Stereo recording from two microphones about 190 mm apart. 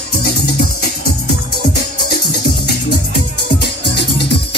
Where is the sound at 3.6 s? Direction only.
60° left (ahead or behind).